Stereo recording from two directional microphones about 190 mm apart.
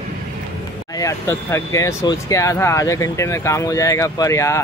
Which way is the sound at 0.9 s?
15° left (ahead or behind).